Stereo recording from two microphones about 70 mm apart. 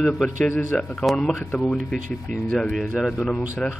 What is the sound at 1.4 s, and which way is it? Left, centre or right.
Speech, left.